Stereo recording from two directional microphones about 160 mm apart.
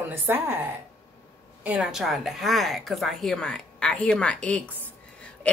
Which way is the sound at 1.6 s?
5° right (ahead or behind).